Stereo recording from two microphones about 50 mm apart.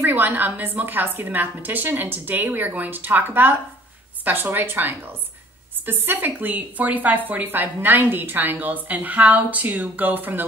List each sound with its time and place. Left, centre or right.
0.0 s a woman's voice: right